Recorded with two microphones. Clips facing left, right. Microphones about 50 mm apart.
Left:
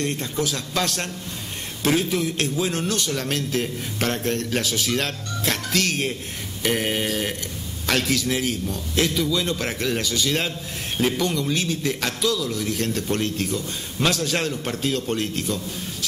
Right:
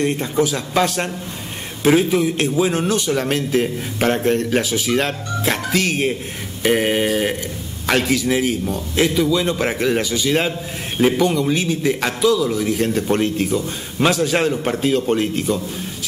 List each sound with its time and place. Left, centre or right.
0.0 s a man's voice: centre